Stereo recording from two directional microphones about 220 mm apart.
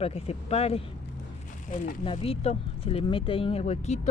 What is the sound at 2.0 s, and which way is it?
Speech, 25° left (ahead or behind).